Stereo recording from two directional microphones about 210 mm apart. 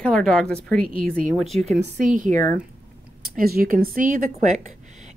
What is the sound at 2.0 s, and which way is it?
Speech, 35° right (ahead or behind).